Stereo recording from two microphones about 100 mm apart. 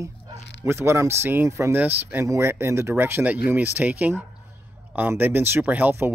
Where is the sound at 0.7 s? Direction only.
25° right (ahead or behind).